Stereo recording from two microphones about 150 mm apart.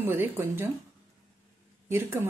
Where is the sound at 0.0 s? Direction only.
15° right (ahead or behind).